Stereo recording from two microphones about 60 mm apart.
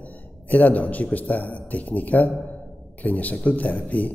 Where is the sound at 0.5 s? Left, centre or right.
Left.